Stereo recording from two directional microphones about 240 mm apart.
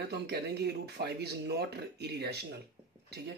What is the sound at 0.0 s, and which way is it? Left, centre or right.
Speech, right.